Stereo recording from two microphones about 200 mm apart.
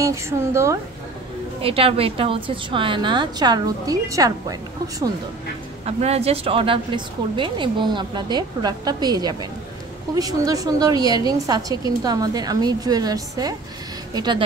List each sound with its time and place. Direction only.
0.0 s a woman's voice: 15° right (ahead or behind)
1.6 s a woman's voice: 30° right (ahead or behind)
5.9 s a woman's voice: 30° right (ahead or behind)